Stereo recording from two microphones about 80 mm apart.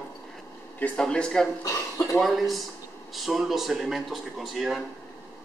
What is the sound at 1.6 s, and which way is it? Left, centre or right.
Speech, left.